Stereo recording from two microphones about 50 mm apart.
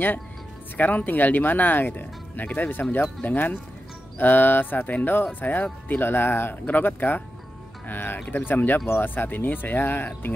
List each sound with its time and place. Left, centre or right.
0.7 s speech: left